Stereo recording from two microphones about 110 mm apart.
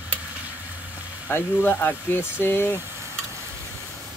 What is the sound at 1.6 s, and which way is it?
Speech, 20° left (ahead or behind).